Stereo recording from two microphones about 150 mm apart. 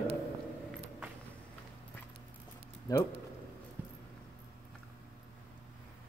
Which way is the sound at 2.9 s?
25° left (ahead or behind).